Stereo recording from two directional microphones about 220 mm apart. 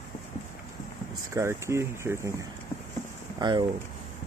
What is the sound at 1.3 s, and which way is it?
Speech, 10° right (ahead or behind).